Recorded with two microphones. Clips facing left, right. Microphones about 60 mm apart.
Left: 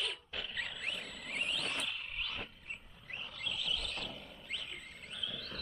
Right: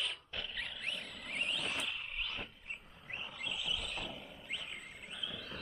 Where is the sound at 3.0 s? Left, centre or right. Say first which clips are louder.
Even; centre.